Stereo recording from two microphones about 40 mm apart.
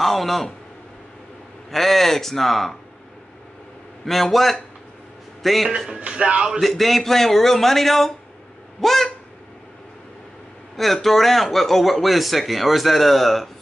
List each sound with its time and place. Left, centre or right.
0.0 s a sound: centre
1.7 s speech: centre
4.0 s a man's voice: centre
5.9 s speech: right
6.6 s speech: centre
8.8 s a sound: centre
10.8 s speech: centre